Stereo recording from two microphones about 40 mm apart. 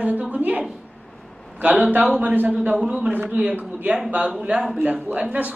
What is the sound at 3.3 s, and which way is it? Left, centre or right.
Speech, right.